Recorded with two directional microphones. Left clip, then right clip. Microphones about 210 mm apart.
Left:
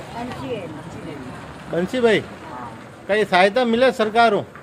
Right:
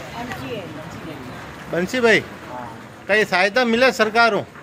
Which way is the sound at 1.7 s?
5° left (ahead or behind).